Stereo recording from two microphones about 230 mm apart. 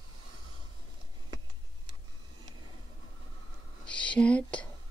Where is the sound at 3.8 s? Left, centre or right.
Centre.